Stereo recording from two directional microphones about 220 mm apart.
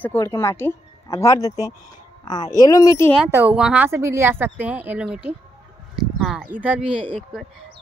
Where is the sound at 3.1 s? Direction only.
5° right (ahead or behind).